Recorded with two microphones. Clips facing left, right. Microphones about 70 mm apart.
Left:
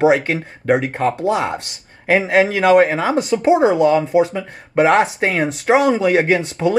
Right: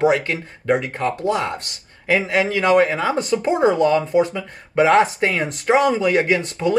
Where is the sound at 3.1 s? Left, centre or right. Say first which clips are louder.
Left 5 dB; centre.